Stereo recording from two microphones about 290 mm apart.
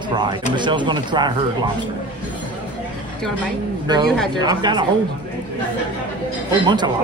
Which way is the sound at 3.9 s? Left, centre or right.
Centre.